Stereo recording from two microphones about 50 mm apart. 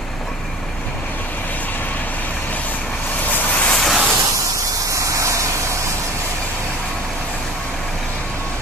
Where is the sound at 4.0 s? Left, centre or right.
Centre.